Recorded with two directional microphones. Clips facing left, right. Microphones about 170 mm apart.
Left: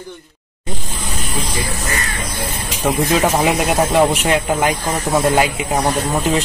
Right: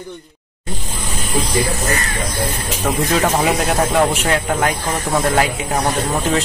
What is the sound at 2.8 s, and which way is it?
Speech, 5° left (ahead or behind).